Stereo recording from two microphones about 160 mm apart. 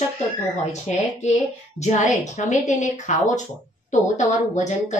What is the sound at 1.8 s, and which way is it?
A woman's voice, 45° left (ahead or behind).